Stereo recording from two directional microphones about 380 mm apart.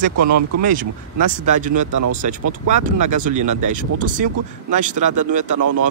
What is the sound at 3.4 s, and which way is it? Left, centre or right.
Speech, right.